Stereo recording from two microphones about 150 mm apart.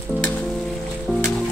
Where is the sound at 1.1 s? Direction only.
5° left (ahead or behind).